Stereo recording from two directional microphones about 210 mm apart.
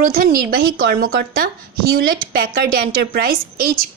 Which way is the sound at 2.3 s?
45° right (ahead or behind).